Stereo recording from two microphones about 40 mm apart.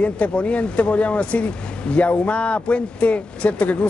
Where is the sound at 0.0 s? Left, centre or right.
Left.